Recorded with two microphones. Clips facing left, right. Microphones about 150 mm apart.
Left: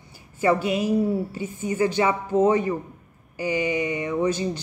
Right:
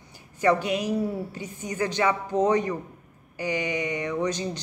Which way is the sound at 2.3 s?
5° left (ahead or behind).